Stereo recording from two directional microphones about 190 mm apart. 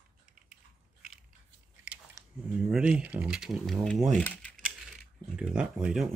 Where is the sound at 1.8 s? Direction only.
5° right (ahead or behind).